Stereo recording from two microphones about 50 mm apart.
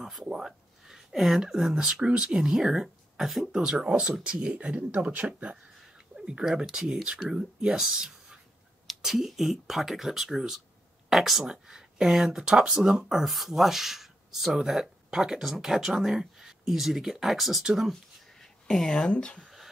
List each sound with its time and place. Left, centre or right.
0.0 s speech: centre
3.8 s speech: right
6.6 s speech: centre
11.4 s speech: centre
18.4 s speech: centre
19.4 s a sound: centre